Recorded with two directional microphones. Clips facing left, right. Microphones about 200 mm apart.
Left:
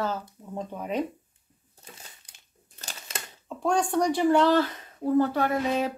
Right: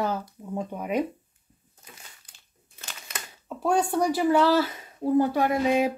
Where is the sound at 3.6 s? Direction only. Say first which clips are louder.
Right 1 dB; 5° right (ahead or behind).